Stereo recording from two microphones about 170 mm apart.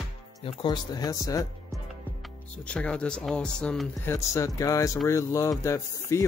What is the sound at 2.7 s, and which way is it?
Speech, 5° left (ahead or behind).